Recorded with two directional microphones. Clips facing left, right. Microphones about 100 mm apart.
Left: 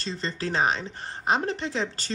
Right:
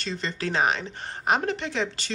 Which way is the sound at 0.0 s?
35° left (ahead or behind).